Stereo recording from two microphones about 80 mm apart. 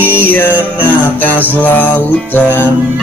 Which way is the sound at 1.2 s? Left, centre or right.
Left.